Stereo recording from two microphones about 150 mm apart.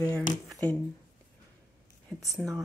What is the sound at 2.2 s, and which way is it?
Speech, centre (ahead or behind).